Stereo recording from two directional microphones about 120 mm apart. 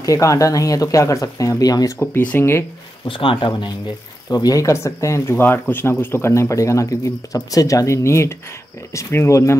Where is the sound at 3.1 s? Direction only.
45° left (ahead or behind).